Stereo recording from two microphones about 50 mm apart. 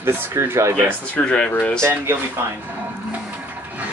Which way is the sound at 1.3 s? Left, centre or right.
Centre.